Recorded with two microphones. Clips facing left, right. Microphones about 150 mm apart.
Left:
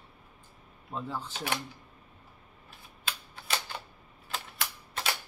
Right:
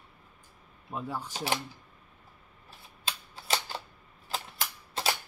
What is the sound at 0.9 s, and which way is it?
Speech, 10° right (ahead or behind).